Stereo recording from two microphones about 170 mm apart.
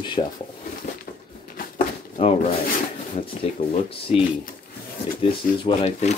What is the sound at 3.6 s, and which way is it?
Speech, 55° left (ahead or behind).